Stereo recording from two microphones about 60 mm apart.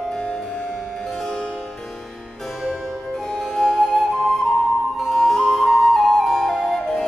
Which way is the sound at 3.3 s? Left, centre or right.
Centre.